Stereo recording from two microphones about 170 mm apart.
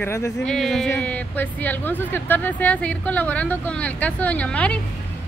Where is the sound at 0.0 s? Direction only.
15° left (ahead or behind).